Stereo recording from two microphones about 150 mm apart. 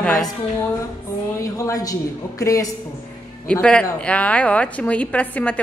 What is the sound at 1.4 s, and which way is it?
A man's voice, 20° left (ahead or behind).